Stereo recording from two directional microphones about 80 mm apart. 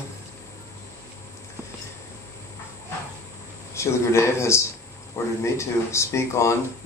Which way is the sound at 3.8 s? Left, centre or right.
Left.